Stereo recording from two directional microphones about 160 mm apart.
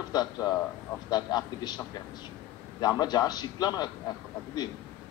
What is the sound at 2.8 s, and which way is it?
A man's voice, 25° left (ahead or behind).